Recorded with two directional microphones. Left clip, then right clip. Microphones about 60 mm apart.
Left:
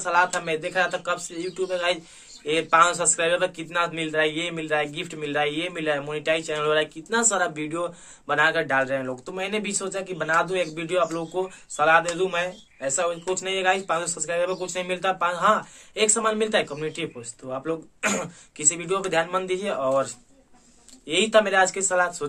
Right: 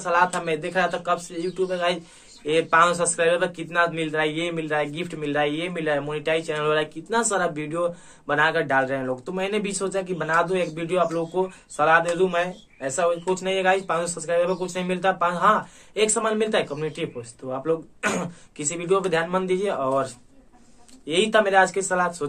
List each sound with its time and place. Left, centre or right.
0.0 s a man's voice: left